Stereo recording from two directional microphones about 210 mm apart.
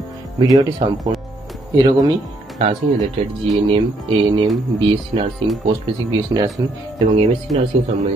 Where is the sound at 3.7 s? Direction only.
25° right (ahead or behind).